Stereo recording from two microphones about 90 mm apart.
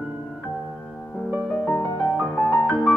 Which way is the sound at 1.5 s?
10° left (ahead or behind).